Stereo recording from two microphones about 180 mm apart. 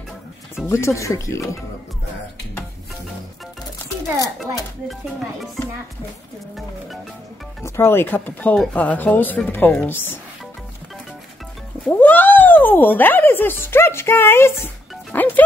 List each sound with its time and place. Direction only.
0.7 s speech: 15° left (ahead or behind)
7.6 s speech: 15° left (ahead or behind)
11.8 s speech: 10° left (ahead or behind)
15.1 s music: 10° left (ahead or behind)